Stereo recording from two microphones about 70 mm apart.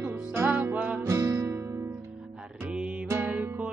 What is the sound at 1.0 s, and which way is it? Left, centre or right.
Guitar, right.